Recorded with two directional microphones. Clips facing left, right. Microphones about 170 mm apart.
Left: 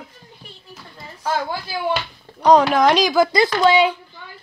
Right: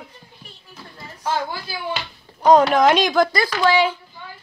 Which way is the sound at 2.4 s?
Centre (ahead or behind).